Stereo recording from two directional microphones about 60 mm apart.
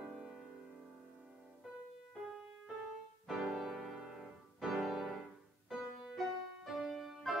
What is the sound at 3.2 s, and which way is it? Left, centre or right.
Music, centre.